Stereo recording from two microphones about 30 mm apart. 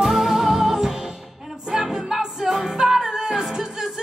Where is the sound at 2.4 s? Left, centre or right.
Centre.